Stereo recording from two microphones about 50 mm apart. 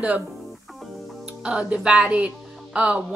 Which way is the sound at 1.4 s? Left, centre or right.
Centre.